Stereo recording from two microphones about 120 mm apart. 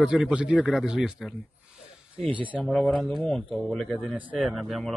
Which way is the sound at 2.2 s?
45° right (ahead or behind).